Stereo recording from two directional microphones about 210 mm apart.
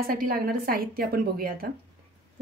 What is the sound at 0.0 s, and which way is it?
A woman's voice, 45° right (ahead or behind).